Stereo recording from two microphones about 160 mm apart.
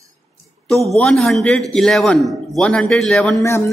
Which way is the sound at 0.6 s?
Centre (ahead or behind).